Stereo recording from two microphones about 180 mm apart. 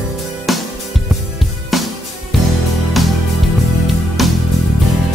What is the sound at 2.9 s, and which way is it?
Music, centre (ahead or behind).